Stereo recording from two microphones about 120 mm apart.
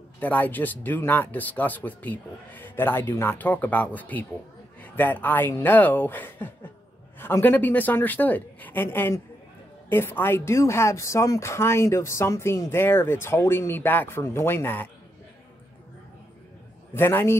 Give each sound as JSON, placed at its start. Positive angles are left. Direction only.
{"t": 0.2, "sound": "speech", "side_deg": 15}
{"t": 16.9, "sound": "speech", "side_deg": 20}